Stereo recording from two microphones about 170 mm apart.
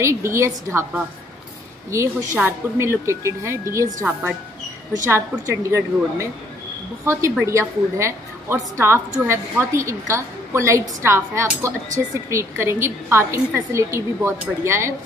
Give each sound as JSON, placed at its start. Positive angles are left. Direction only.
{"t": 0.0, "sound": "a woman's voice", "side_deg": -15}